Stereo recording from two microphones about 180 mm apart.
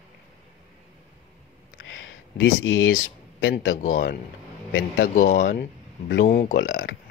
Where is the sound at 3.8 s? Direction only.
45° left (ahead or behind).